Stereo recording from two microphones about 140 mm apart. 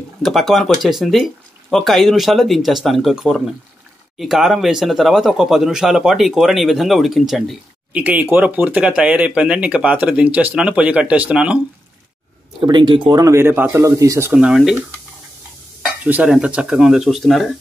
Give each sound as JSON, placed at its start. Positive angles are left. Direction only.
{"t": 0.2, "sound": "speech", "side_deg": 0}
{"t": 8.0, "sound": "speech", "side_deg": -10}
{"t": 12.5, "sound": "speech", "side_deg": -35}
{"t": 14.3, "sound": "speech", "side_deg": -5}
{"t": 15.8, "sound": "speech", "side_deg": -10}